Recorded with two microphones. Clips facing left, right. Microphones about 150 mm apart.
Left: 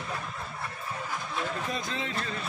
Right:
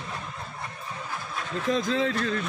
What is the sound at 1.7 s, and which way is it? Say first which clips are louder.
Music: right 9 dB; 90° right.